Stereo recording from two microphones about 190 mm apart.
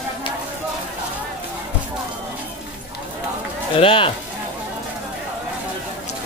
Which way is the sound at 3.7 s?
25° left (ahead or behind).